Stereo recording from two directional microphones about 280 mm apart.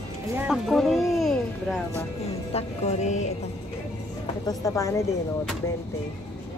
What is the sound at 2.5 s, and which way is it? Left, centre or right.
Music, left.